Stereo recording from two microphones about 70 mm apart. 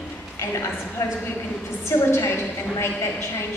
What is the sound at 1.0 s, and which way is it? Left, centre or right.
Speech, left.